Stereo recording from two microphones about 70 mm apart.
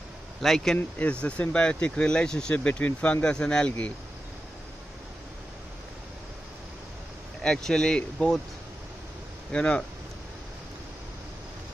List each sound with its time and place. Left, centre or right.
0.4 s speech: centre
0.7 s speech: left
2.5 s speech: left
7.4 s speech: centre
9.5 s speech: centre